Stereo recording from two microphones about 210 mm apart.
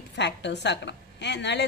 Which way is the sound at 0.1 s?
55° left (ahead or behind).